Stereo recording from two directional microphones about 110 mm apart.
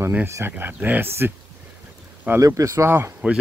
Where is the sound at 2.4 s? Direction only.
30° right (ahead or behind).